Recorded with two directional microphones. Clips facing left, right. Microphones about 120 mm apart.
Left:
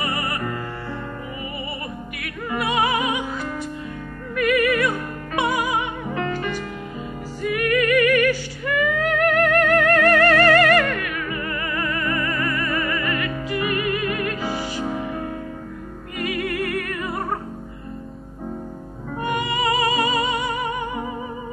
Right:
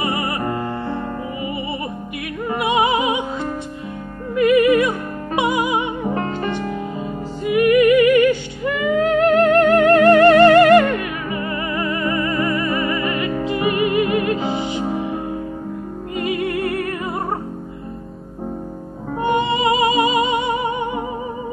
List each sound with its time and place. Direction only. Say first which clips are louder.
0.0 s music: right 4 dB; 25° right (ahead or behind)
6.0 s music: right 4 dB; 35° right (ahead or behind)
7.4 s music: right 7 dB; 20° right (ahead or behind)
19.1 s music: right 6 dB; 25° right (ahead or behind)